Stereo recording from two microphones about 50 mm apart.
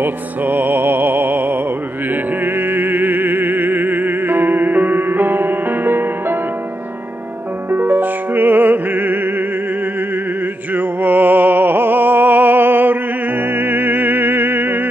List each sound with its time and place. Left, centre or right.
0.0 s music: right
7.7 s music: right
10.7 s music: right